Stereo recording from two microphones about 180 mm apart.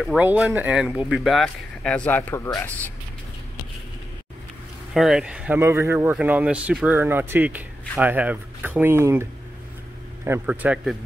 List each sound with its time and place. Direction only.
0.0 s speech: centre (ahead or behind)
4.9 s speech: centre (ahead or behind)